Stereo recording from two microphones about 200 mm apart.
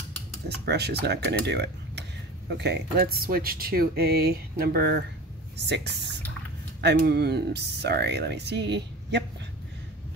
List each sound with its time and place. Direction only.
0.7 s speech: 55° right (ahead or behind)